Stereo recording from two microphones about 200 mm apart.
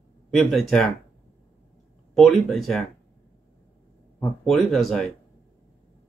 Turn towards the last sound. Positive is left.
turn(degrees=0)  # may be behind; listen again after turning